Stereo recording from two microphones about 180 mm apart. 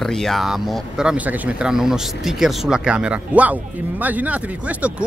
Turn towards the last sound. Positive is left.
turn(degrees=-10)  # may be behind; listen again after turning